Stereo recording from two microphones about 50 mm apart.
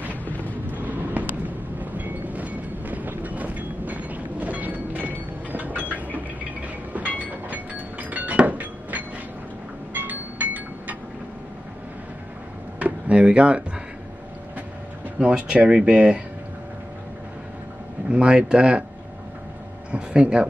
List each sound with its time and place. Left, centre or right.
0.7 s vehicle: right
1.8 s train: right
7.2 s a sound: right
8.1 s chink: right
8.5 s a sound: right
9.9 s music: right
12.7 s a sound: right
15.2 s speech: right
18.1 s speech: right
19.9 s speech: right